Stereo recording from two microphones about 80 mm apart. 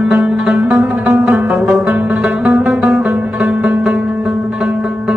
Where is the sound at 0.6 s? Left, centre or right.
Right.